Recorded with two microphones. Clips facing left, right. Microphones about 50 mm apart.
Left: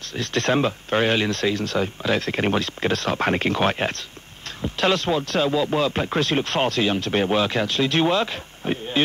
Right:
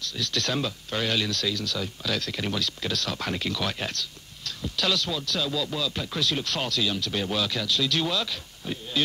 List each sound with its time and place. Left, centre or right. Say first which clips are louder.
0.0 s speech: left 6 dB; left